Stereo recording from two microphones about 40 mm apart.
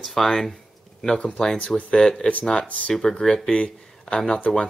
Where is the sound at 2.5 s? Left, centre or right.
Left.